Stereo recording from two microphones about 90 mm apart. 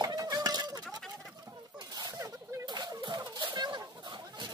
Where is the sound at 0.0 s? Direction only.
45° right (ahead or behind).